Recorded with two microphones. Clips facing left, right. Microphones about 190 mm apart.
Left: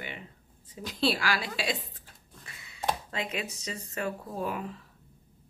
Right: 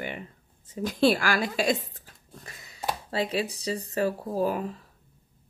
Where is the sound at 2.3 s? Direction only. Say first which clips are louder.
Right 6 dB; 40° right (ahead or behind).